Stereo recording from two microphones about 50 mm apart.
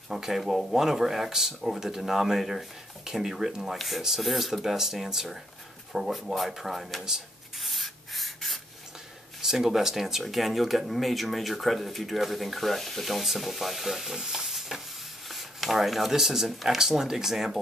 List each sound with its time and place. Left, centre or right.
0.1 s speech: centre
5.9 s rub: centre
9.4 s speech: centre